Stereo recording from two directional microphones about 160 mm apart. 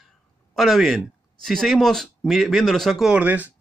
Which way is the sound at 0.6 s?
Centre (ahead or behind).